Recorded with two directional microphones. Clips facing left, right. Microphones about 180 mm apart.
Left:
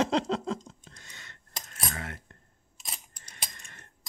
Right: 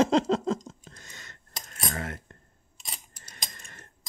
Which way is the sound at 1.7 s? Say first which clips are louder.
Right 4 dB; 40° right (ahead or behind).